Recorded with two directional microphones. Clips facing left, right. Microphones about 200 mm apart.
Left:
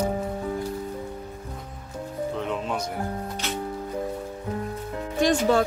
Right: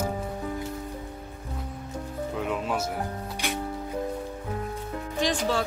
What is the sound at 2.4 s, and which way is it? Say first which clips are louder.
Music: right 3 dB; 5° right (ahead or behind).